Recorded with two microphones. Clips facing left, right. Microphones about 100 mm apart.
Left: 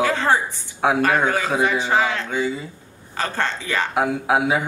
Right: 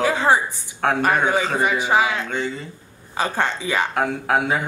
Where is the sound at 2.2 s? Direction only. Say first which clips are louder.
Left 2 dB; 5° left (ahead or behind).